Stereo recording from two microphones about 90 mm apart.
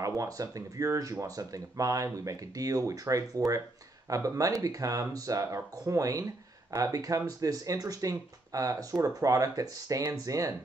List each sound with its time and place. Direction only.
0.0 s speech: 40° right (ahead or behind)